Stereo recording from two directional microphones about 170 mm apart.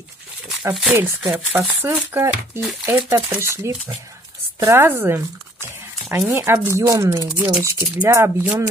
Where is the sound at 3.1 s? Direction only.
10° right (ahead or behind).